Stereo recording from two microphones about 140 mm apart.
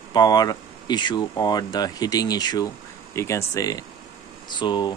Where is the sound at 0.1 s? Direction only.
30° left (ahead or behind).